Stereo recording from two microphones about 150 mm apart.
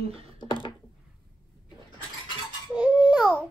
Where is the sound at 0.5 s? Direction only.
35° left (ahead or behind).